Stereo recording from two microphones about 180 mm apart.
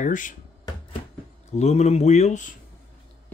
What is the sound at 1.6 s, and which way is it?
Speech, 35° left (ahead or behind).